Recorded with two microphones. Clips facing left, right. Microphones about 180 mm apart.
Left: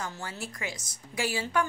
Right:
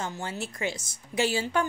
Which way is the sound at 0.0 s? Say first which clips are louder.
Right 4 dB; 25° right (ahead or behind).